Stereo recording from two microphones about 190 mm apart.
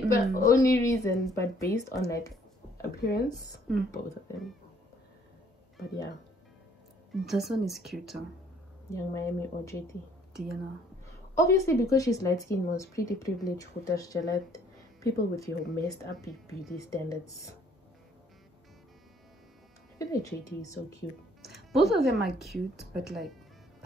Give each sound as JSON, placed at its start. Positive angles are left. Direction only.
{"t": 0.2, "sound": "speech", "side_deg": 15}
{"t": 2.8, "sound": "speech", "side_deg": 55}
{"t": 3.7, "sound": "speech", "side_deg": 0}
{"t": 7.1, "sound": "speech", "side_deg": 0}
{"t": 8.9, "sound": "speech", "side_deg": 15}
{"t": 10.3, "sound": "a woman's voice", "side_deg": 0}
{"t": 11.3, "sound": "speech", "side_deg": 15}
{"t": 20.0, "sound": "speech", "side_deg": 15}
{"t": 21.4, "sound": "speech", "side_deg": 0}